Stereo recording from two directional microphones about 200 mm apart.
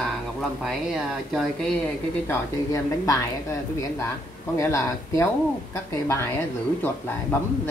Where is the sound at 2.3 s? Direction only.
15° left (ahead or behind).